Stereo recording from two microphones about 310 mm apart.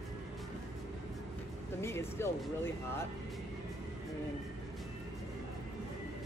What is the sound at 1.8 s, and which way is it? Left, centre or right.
Speech, centre.